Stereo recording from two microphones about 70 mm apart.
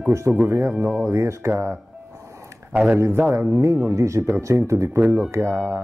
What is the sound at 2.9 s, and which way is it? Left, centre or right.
Speech, right.